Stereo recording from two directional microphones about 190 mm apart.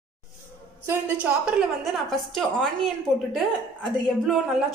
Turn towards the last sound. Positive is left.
turn(degrees=0)  # may be behind; listen again after turning